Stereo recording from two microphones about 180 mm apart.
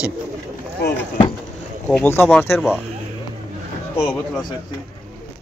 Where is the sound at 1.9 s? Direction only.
10° left (ahead or behind).